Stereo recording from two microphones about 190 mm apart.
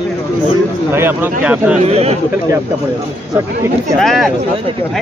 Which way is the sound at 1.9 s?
35° right (ahead or behind).